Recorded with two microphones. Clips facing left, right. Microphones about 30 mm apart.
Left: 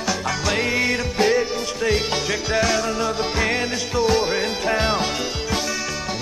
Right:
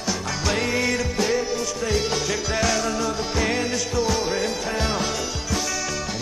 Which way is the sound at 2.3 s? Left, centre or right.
Centre.